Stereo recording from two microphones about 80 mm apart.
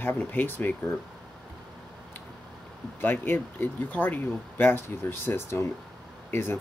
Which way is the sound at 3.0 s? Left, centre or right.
Left.